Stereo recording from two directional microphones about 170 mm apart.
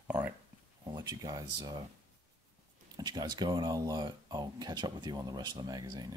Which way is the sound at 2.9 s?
25° right (ahead or behind).